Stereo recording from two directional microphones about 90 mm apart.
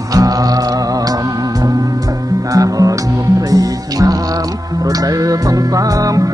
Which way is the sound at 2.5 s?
40° right (ahead or behind).